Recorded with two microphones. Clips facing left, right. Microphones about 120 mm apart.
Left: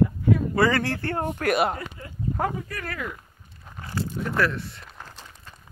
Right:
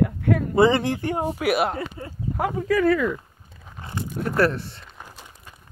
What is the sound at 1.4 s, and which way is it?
Speech, 5° right (ahead or behind).